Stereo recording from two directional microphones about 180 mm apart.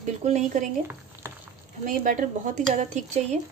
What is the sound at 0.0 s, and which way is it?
Speech, 40° right (ahead or behind).